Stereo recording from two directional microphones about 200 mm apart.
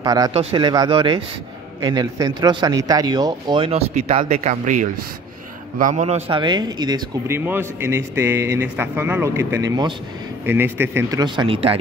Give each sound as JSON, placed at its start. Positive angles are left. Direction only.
{"t": 0.0, "sound": "speech", "side_deg": -20}
{"t": 0.3, "sound": "a man's voice", "side_deg": -30}